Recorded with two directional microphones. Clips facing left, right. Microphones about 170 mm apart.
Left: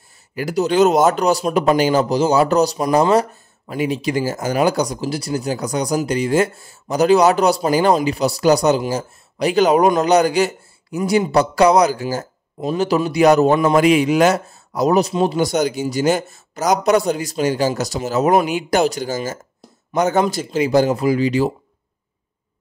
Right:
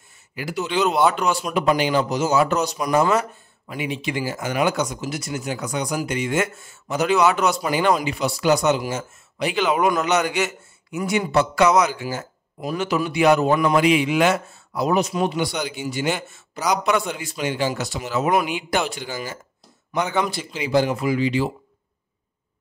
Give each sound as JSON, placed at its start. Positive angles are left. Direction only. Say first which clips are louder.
{"t": 0.3, "sound": "a man's voice", "louder": "left 7 dB", "side_deg": 45}
{"t": 13.5, "sound": "a man's voice", "louder": "left 4 dB", "side_deg": 25}
{"t": 13.7, "sound": "speech", "louder": "left 4 dB", "side_deg": 45}